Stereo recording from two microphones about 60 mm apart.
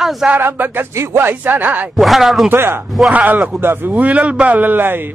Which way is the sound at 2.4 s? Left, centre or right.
Right.